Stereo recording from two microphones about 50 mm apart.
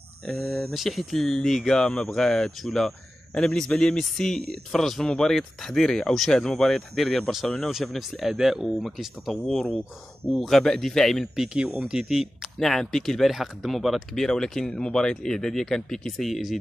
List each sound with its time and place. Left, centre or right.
0.2 s speech: centre
11.3 s speech: centre
12.5 s speech: centre